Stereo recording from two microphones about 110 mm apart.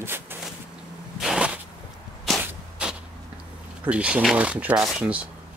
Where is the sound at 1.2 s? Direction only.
5° right (ahead or behind).